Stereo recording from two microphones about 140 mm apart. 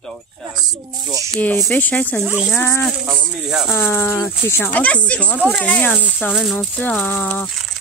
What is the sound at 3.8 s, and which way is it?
Speech, 15° left (ahead or behind).